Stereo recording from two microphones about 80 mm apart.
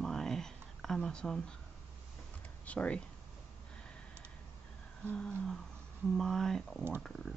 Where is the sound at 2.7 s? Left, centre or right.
Centre.